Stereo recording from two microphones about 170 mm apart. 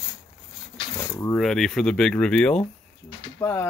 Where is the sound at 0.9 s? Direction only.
20° left (ahead or behind).